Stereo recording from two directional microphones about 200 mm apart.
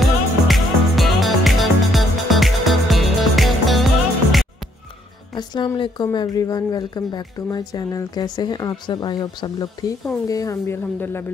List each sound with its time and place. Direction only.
0.5 s music: centre (ahead or behind)
5.3 s speech: 20° left (ahead or behind)